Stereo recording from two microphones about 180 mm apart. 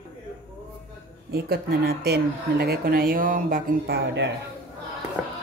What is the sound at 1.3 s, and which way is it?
Speech, 60° right (ahead or behind).